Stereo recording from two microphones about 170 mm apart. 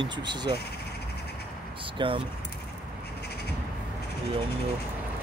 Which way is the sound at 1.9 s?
30° right (ahead or behind).